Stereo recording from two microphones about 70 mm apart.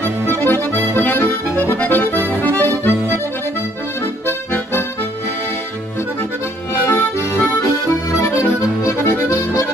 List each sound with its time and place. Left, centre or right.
0.0 s accordion: left
4.3 s accordion: left
6.9 s accordion: left
7.6 s accordion: left